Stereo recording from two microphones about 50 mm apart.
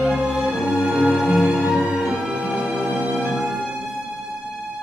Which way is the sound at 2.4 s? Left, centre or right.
Centre.